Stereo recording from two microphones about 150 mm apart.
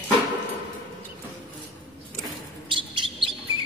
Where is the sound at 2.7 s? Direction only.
35° right (ahead or behind).